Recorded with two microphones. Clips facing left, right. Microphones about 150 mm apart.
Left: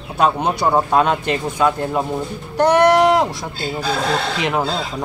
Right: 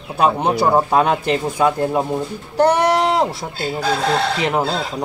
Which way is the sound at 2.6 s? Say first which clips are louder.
Left 2 dB; 30° right (ahead or behind).